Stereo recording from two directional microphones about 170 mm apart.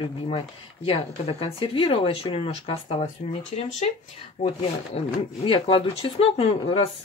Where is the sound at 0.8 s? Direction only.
35° left (ahead or behind).